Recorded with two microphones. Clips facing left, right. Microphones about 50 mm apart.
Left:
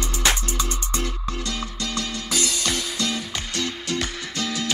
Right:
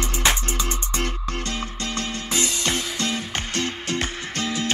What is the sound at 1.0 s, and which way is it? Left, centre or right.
Music, right.